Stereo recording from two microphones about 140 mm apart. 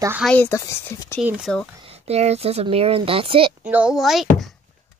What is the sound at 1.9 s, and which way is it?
Speech, 45° right (ahead or behind).